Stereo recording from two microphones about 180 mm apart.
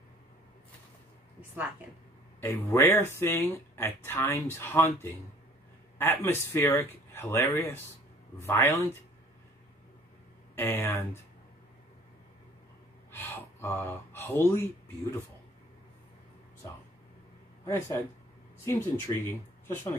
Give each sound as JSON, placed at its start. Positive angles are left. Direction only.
{"t": 2.4, "sound": "speech", "side_deg": 15}
{"t": 10.5, "sound": "speech", "side_deg": 10}
{"t": 13.1, "sound": "gasp", "side_deg": 10}
{"t": 17.6, "sound": "speech", "side_deg": 15}